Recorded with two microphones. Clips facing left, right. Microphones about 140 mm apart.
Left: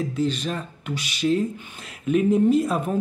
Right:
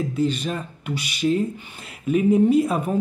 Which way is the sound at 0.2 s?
50° right (ahead or behind).